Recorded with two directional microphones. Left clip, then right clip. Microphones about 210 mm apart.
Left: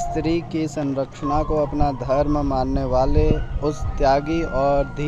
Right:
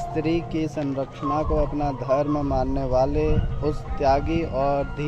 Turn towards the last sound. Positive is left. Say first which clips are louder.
# left 3 dB
turn(degrees=25)  # may be behind; listen again after turning